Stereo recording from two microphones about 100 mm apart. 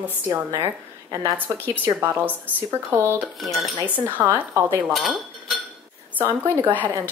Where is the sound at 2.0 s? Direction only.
20° right (ahead or behind).